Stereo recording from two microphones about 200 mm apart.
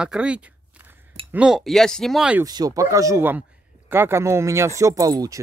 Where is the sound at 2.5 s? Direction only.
20° right (ahead or behind).